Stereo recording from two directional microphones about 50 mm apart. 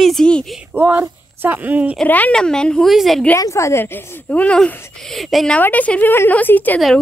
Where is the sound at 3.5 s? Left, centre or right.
Left.